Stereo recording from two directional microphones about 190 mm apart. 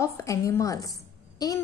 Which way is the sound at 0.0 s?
15° left (ahead or behind).